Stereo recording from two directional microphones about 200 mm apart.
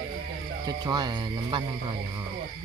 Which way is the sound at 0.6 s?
20° right (ahead or behind).